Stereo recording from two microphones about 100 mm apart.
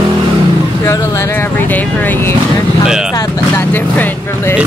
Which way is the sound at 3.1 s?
35° left (ahead or behind).